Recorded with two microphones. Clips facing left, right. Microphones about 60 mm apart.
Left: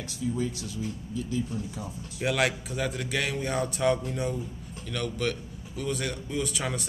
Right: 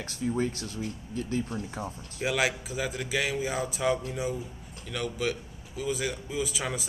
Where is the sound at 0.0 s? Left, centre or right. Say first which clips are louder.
Right 1 dB; right.